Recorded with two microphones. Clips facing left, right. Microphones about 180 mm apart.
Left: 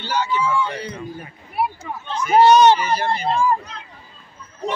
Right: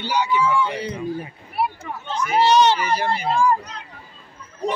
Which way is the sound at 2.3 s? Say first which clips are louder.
Left 4 dB; 50° left (ahead or behind).